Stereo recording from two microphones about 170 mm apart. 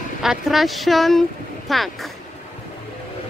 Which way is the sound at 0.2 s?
Centre (ahead or behind).